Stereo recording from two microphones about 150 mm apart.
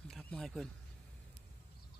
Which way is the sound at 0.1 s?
5° left (ahead or behind).